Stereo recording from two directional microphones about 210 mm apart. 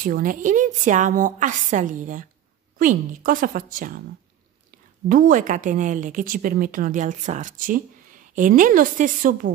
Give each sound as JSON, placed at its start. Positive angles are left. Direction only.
{"t": 0.0, "sound": "a woman's voice", "side_deg": -40}